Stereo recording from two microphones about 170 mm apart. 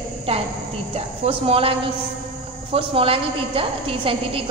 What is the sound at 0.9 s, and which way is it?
Speech, 35° right (ahead or behind).